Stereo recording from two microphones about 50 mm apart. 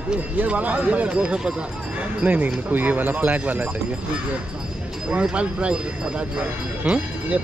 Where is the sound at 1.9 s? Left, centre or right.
Right.